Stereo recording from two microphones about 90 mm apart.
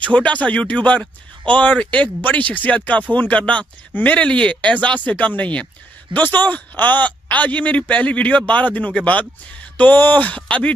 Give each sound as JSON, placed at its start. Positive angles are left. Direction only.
{"t": 0.1, "sound": "speech", "side_deg": 15}